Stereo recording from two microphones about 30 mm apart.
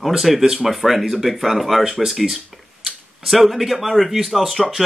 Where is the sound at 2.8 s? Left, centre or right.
Centre.